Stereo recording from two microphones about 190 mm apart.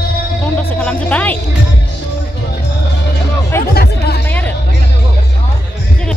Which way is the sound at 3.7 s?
55° left (ahead or behind).